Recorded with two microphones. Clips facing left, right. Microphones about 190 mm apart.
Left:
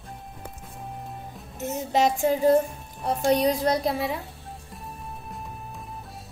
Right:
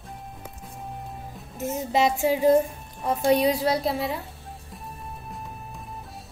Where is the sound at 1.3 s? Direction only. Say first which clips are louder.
Right 2 dB; centre (ahead or behind).